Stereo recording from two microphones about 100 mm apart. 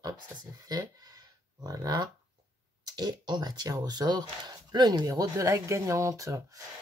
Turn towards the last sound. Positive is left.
turn(degrees=-35)  # may be behind; listen again after turning